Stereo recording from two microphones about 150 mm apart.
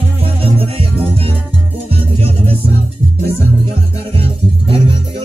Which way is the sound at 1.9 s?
40° right (ahead or behind).